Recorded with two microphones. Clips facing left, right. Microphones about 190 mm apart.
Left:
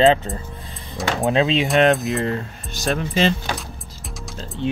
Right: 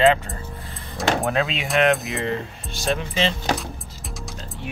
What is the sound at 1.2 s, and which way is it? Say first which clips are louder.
Speech: left 4 dB; 20° left (ahead or behind).